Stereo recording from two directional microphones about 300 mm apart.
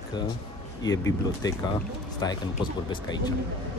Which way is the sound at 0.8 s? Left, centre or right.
Centre.